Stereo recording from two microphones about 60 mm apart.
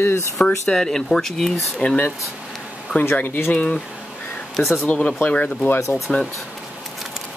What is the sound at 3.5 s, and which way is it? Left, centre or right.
Speech, centre.